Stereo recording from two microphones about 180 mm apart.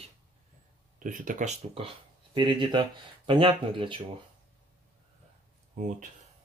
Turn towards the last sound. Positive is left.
turn(degrees=-45)  # may be behind; listen again after turning